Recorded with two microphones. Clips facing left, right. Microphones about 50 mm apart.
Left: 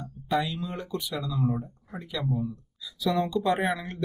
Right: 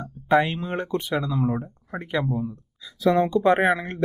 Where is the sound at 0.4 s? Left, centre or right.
Right.